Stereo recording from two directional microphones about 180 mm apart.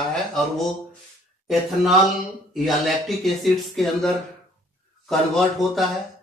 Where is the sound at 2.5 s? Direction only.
Centre (ahead or behind).